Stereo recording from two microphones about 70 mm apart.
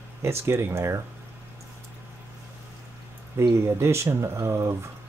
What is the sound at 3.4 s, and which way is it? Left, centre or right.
Speech, right.